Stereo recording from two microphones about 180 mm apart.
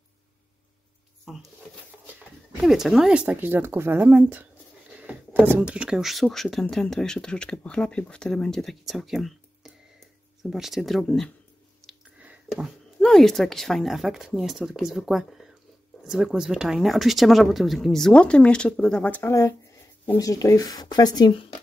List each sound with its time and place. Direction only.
1.3 s speech: 5° right (ahead or behind)
2.5 s speech: centre (ahead or behind); by 21.5 s 30° left (ahead or behind)